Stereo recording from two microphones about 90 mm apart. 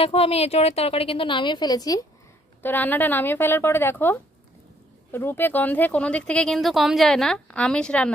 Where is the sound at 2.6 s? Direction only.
20° left (ahead or behind).